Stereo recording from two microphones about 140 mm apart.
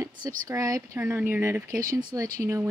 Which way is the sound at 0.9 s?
15° right (ahead or behind).